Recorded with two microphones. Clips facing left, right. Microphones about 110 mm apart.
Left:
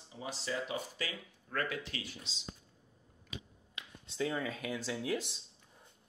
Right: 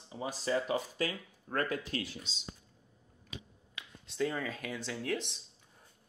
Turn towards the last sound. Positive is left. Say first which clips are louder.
# even
turn(degrees=5)  # may be behind; listen again after turning